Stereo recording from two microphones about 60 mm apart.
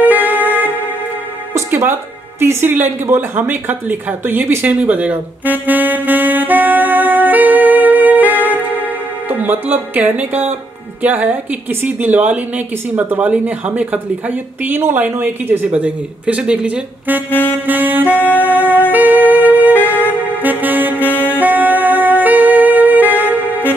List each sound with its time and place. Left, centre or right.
0.0 s music: right
2.7 s speech: right
4.6 s saxophone: right
9.3 s speech: right
14.7 s speech: right
15.8 s speech: centre
17.3 s saxophone: left
17.6 s saxophone: right
18.2 s music: left
18.9 s music: right
20.0 s saxophone: left
20.4 s saxophone: right
21.0 s music: left
21.4 s music: right